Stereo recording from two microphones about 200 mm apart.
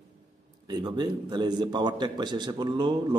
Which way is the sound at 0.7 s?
20° right (ahead or behind).